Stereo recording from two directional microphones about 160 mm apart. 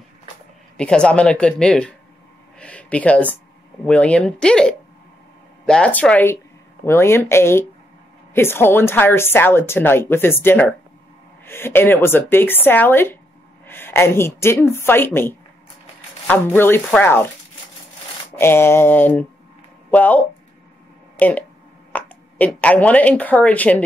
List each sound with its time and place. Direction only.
0.7 s a woman's voice: 5° left (ahead or behind)
18.3 s speech: 15° left (ahead or behind)
21.2 s speech: 10° left (ahead or behind)